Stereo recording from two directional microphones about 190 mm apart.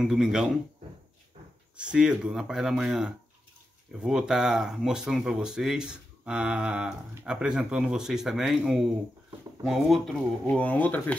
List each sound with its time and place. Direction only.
0.0 s speech: 5° right (ahead or behind)
1.8 s speech: 5° right (ahead or behind)